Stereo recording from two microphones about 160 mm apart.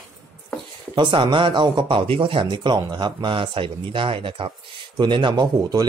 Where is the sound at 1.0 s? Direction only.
30° right (ahead or behind).